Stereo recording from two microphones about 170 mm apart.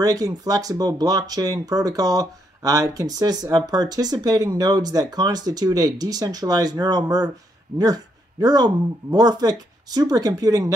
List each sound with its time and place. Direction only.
0.0 s speech: 20° right (ahead or behind)